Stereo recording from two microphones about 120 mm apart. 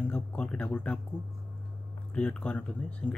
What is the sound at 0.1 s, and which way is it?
Speech, 10° left (ahead or behind).